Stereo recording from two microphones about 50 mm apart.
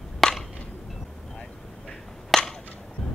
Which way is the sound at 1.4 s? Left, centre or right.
Centre.